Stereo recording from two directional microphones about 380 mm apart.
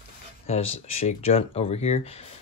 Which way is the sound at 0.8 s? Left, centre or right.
Centre.